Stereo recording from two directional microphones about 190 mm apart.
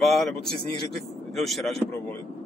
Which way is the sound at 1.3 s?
Centre (ahead or behind).